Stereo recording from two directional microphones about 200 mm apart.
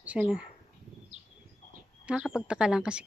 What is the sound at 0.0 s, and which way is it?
Speech, 5° right (ahead or behind).